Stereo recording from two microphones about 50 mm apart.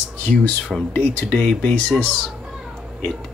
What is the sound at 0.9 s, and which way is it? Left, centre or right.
Speech, left.